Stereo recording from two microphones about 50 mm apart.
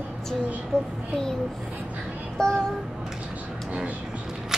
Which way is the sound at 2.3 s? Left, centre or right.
Centre.